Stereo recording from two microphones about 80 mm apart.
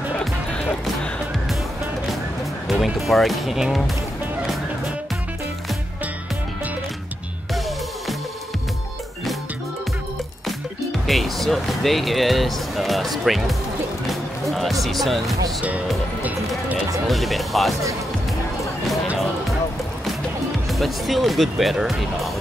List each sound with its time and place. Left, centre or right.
0.2 s music: centre
2.7 s speech: centre
11.1 s speech: centre
14.0 s music: centre
15.0 s speech: centre
16.2 s music: centre
17.1 s speech: centre
20.7 s speech: centre